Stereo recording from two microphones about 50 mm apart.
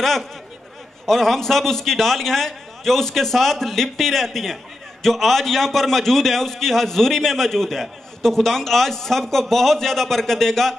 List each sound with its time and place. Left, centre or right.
0.0 s a man's voice: centre